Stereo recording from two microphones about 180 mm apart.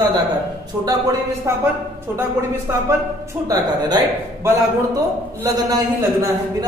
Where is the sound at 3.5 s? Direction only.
25° right (ahead or behind).